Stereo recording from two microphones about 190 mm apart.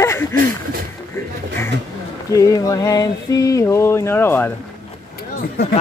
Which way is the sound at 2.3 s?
20° left (ahead or behind).